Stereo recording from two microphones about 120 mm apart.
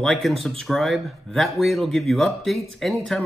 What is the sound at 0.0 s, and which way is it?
Speech, centre (ahead or behind).